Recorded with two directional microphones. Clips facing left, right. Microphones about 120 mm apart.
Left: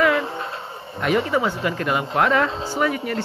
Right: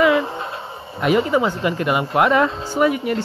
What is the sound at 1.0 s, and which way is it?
Speech, 10° right (ahead or behind).